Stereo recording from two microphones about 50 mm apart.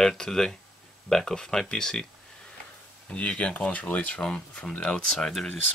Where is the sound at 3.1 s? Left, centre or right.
Left.